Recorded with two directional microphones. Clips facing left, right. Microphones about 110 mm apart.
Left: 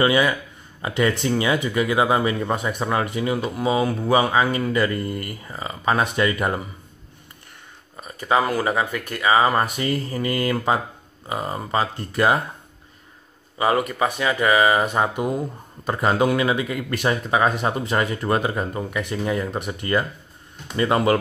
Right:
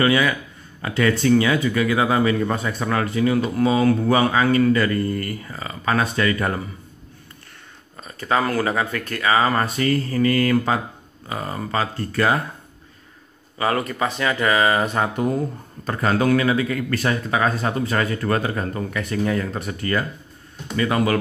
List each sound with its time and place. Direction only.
0.0 s speech: 20° left (ahead or behind)
8.0 s speech: 15° left (ahead or behind)
13.6 s speech: 15° left (ahead or behind)